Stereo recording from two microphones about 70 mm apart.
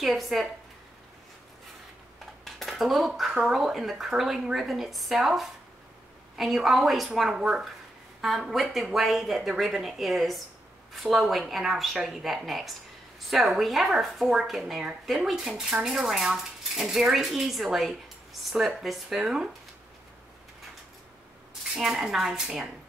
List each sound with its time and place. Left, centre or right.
0.0 s speech: centre
2.4 s dishes: centre
3.2 s speech: centre
21.7 s speech: centre